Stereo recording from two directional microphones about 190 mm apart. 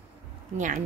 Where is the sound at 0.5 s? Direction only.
40° right (ahead or behind).